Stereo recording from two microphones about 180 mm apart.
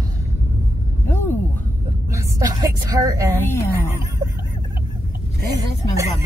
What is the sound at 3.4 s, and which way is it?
Speech, 15° left (ahead or behind).